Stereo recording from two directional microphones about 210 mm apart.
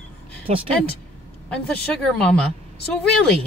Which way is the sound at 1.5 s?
5° left (ahead or behind).